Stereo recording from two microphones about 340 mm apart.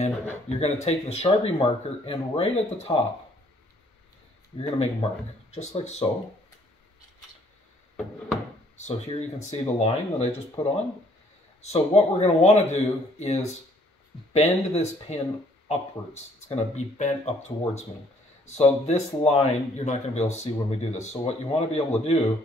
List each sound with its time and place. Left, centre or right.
0.0 s speech: centre
4.5 s speech: centre
8.7 s speech: centre